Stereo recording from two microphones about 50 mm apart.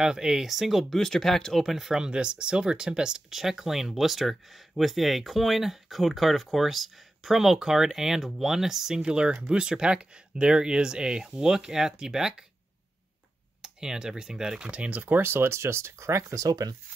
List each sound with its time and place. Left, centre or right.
0.0 s speech: centre
0.9 s speech: centre
2.0 s speech: centre
13.6 s speech: centre
14.7 s speech: right
15.2 s speech: right